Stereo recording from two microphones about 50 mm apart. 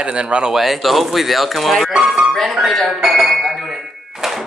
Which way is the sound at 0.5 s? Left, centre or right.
Centre.